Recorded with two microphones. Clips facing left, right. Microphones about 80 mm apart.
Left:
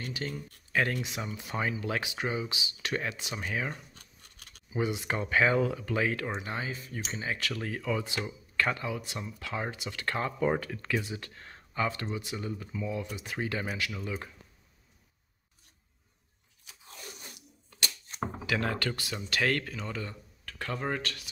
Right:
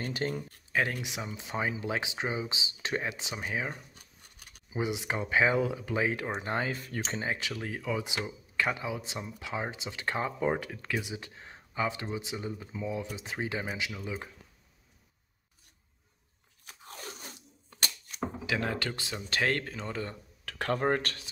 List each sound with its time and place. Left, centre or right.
0.0 s speech: right
0.7 s speech: centre
6.4 s speech: right
7.0 s speech: right
7.5 s speech: centre
16.6 s crunch: right
17.3 s a sound: right
18.5 s speech: centre
20.4 s speech: right